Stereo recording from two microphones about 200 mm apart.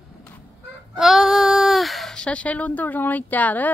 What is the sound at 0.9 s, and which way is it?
Speech, centre (ahead or behind).